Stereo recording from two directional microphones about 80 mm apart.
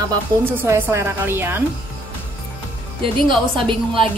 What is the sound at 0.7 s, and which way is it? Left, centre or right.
Speech, right.